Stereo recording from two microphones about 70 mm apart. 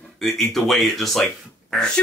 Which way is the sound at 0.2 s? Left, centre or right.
Centre.